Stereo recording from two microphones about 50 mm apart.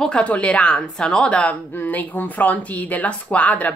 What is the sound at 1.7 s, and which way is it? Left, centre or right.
Speech, left.